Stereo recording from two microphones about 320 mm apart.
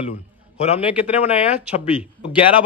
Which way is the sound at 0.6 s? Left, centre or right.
Centre.